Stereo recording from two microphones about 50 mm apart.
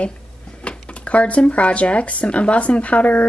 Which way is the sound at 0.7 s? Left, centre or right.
Left.